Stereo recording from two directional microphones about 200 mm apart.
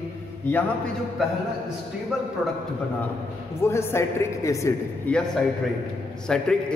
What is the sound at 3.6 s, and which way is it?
A woman's voice, 15° left (ahead or behind).